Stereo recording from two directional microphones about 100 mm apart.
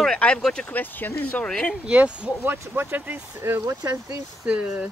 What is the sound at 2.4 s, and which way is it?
Speech, 25° right (ahead or behind).